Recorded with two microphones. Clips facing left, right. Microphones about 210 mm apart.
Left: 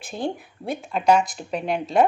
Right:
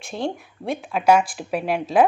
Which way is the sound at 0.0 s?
Centre (ahead or behind).